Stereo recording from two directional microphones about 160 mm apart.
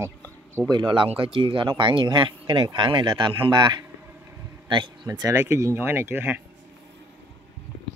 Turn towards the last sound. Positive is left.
turn(degrees=-15)  # may be behind; listen again after turning